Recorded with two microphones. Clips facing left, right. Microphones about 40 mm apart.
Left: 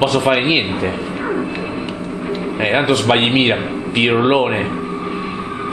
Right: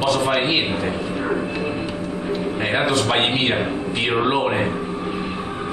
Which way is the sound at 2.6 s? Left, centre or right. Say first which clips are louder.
Left 6 dB; left.